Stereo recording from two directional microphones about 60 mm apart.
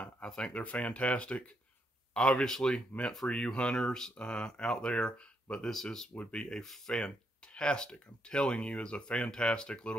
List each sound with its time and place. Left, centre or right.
0.3 s speech: centre